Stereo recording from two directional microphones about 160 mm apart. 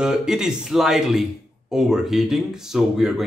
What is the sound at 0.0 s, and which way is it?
Speech, 5° right (ahead or behind).